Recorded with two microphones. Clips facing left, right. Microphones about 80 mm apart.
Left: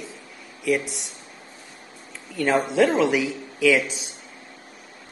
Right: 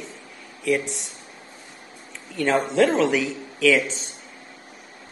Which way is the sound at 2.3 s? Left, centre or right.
Centre.